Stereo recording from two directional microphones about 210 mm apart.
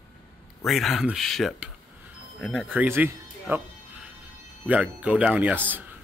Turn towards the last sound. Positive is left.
turn(degrees=-10)  # may be behind; listen again after turning